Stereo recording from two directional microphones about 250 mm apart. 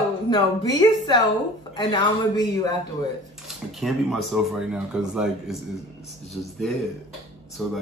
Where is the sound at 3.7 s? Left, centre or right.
Centre.